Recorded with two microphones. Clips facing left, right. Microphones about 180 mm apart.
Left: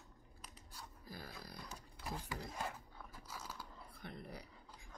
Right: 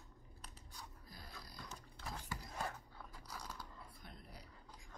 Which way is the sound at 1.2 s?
60° left (ahead or behind).